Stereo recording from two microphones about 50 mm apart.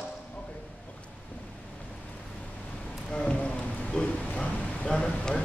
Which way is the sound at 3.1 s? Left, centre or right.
Left.